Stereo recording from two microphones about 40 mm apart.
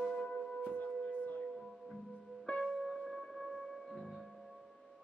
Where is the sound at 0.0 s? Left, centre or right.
Centre.